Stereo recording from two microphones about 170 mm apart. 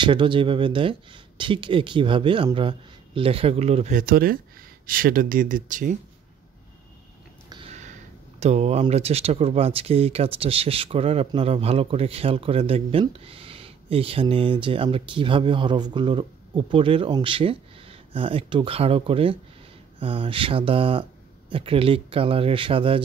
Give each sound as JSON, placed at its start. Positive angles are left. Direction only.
{"t": 0.0, "sound": "speech", "side_deg": -30}
{"t": 4.0, "sound": "speech", "side_deg": -60}
{"t": 7.4, "sound": "a sound", "side_deg": -25}
{"t": 8.4, "sound": "speech", "side_deg": -40}